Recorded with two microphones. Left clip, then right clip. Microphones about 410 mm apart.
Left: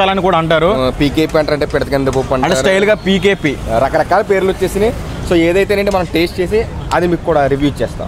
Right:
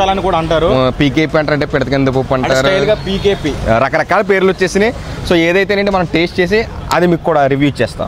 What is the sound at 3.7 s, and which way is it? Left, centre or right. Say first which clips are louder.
Speech: right 1 dB; right.